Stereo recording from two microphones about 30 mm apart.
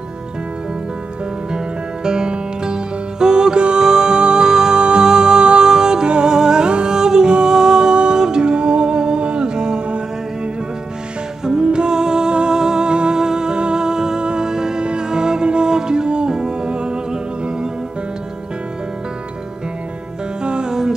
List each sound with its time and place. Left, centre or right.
2.0 s music: right
6.0 s music: right
20.4 s music: right